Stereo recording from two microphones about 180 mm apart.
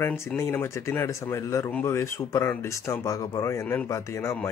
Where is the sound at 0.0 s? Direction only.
10° left (ahead or behind).